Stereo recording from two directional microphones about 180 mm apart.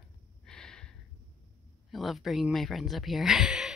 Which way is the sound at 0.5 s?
5° left (ahead or behind).